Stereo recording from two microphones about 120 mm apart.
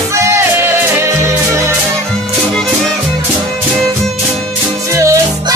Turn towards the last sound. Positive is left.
turn(degrees=-25)  # may be behind; listen again after turning